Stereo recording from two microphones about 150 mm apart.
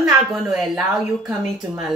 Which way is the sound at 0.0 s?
Centre (ahead or behind).